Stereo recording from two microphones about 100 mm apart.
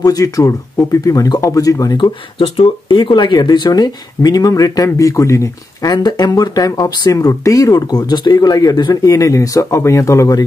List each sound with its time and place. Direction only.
0.0 s speech: 35° left (ahead or behind)
2.0 s speech: 65° left (ahead or behind); by 10.4 s 30° left (ahead or behind)